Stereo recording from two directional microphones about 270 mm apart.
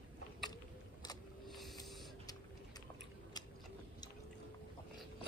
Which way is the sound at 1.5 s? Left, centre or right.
Centre.